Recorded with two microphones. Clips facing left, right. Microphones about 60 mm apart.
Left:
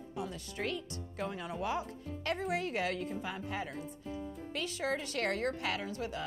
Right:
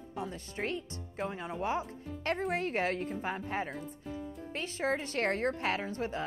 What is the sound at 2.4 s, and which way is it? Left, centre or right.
A woman's voice, right.